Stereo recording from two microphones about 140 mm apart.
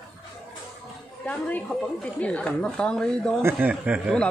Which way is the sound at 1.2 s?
10° left (ahead or behind).